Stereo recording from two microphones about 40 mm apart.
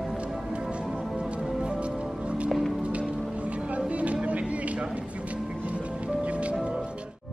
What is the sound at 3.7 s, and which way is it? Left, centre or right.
Music, right.